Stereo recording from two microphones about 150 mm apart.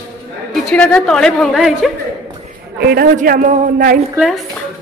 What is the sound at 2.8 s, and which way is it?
A man's voice, 90° right.